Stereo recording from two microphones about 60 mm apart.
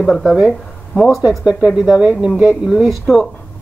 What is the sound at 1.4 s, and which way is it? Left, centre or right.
Speech, centre.